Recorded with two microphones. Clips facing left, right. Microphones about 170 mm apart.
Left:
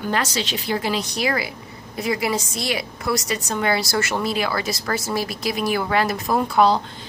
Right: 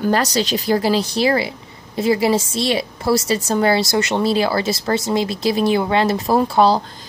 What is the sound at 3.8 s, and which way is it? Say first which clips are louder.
Speech: right 5 dB; 20° right (ahead or behind).